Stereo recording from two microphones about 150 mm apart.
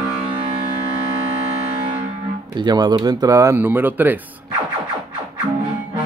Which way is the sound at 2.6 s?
30° right (ahead or behind).